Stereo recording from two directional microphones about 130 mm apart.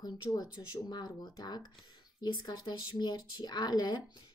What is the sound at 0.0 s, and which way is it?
A woman's voice, 25° left (ahead or behind).